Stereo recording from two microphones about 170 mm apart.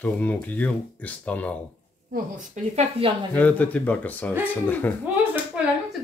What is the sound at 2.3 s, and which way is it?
Speech, 45° right (ahead or behind).